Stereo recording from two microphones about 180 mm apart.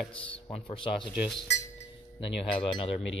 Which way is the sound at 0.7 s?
30° left (ahead or behind).